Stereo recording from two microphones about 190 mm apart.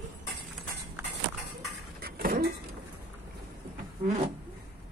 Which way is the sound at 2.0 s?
55° right (ahead or behind).